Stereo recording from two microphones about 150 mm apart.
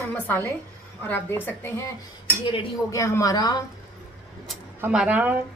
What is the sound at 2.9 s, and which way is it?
Speech, 20° left (ahead or behind).